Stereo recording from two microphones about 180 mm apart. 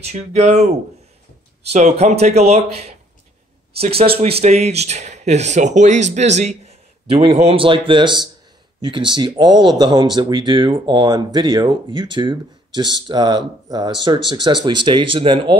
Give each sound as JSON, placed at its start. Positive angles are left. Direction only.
{"t": 0.0, "sound": "speech", "side_deg": -35}
{"t": 1.7, "sound": "speech", "side_deg": -40}
{"t": 4.0, "sound": "speech", "side_deg": -35}